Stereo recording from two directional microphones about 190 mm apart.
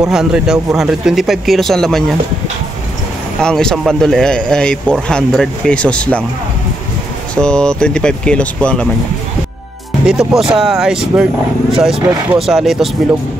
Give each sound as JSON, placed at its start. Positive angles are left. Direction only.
{"t": 0.0, "sound": "speech", "side_deg": -5}
{"t": 3.3, "sound": "speech", "side_deg": 5}
{"t": 7.3, "sound": "speech", "side_deg": 5}
{"t": 10.0, "sound": "speech", "side_deg": -5}